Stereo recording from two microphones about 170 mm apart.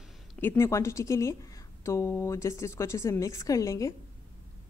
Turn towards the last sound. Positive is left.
turn(degrees=20)  # may be behind; listen again after turning